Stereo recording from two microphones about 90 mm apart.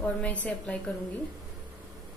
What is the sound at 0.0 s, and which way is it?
Speech, 15° left (ahead or behind).